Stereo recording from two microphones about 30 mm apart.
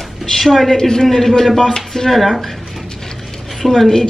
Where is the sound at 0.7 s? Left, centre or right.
Centre.